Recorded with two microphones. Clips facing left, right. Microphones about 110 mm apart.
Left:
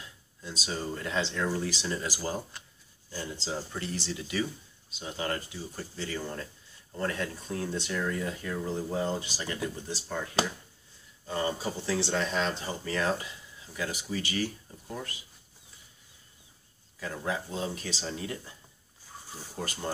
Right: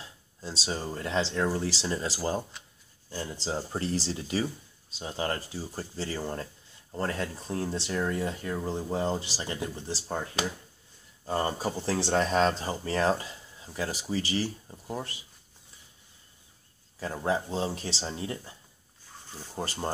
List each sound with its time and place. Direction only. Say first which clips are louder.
0.0 s speech: right 3 dB; 30° right (ahead or behind)
17.0 s speech: right 4 dB; 30° right (ahead or behind)
19.5 s speech: right 3 dB; 35° right (ahead or behind)